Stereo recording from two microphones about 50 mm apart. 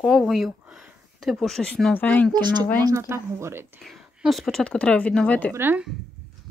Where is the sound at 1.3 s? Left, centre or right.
Centre.